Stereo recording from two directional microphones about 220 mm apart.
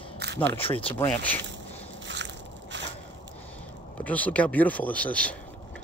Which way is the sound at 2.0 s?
55° right (ahead or behind).